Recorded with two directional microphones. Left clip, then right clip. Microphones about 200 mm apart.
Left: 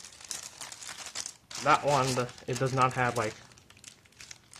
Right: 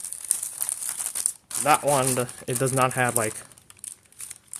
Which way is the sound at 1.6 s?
50° right (ahead or behind).